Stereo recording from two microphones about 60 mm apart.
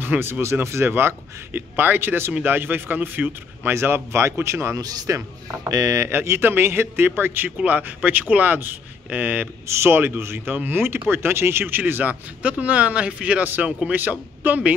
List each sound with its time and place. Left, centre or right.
0.0 s speech: right
4.7 s speech: right
5.9 s speech: right
9.7 s speech: right; by 13.4 s centre
13.4 s speech: right
13.7 s speech: centre